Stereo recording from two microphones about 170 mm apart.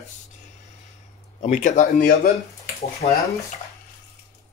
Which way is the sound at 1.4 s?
45° left (ahead or behind).